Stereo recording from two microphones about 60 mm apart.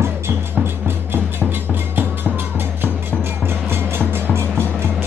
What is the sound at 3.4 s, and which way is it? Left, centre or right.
Music, right.